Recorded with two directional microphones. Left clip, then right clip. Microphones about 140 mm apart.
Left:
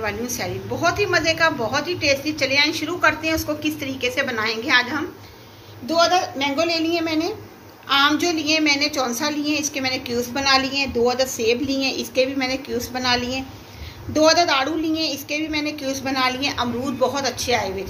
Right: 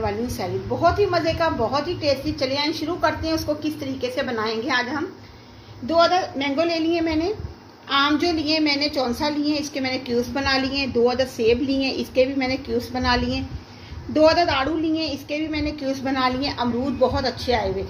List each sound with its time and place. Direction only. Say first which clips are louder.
0.7 s a woman's voice: even; 45° right (ahead or behind)
5.9 s a woman's voice: even; 70° right (ahead or behind)